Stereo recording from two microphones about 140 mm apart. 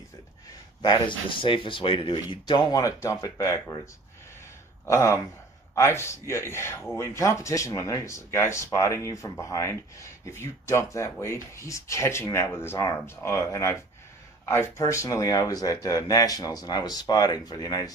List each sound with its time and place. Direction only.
0.8 s speech: 35° left (ahead or behind); by 3.7 s 20° left (ahead or behind)
4.8 s speech: 20° left (ahead or behind)